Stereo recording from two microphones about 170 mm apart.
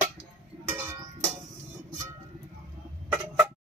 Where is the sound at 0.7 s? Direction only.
15° right (ahead or behind).